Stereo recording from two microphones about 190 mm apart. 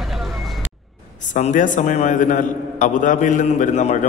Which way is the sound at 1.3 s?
40° left (ahead or behind).